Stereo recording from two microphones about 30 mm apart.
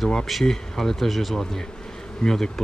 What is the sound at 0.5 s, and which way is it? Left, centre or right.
Speech, centre.